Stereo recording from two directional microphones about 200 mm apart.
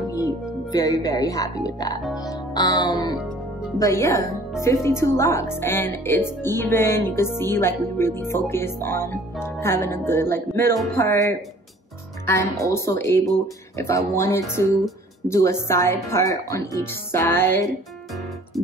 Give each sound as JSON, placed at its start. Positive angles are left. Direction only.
{"t": 0.1, "sound": "speech", "side_deg": 15}
{"t": 2.1, "sound": "music", "side_deg": 20}
{"t": 3.7, "sound": "speech", "side_deg": 15}